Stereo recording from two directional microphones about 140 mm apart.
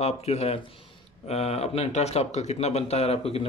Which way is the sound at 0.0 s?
50° left (ahead or behind).